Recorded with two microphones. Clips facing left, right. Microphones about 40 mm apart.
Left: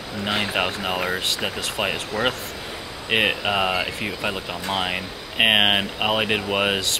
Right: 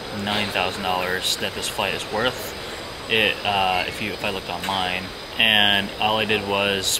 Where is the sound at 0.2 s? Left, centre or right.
Centre.